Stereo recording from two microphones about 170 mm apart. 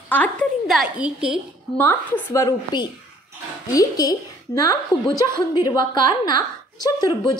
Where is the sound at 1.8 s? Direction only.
10° left (ahead or behind).